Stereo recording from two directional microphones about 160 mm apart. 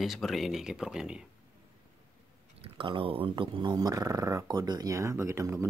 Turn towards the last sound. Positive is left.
turn(degrees=-20)  # may be behind; listen again after turning